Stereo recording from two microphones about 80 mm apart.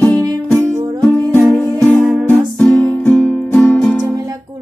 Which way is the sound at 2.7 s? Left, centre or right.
Left.